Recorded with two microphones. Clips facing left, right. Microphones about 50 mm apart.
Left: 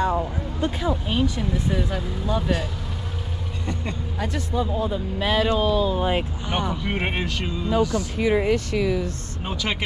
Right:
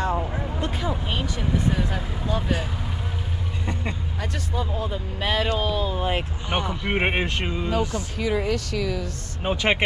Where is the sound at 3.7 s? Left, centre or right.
Centre.